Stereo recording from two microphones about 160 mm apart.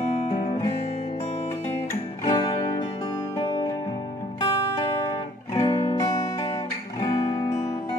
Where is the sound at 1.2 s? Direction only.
40° left (ahead or behind).